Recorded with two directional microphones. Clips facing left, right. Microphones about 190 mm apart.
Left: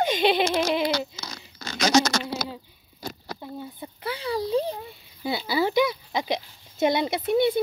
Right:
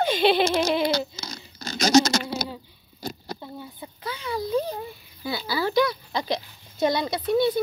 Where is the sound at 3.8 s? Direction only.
30° left (ahead or behind).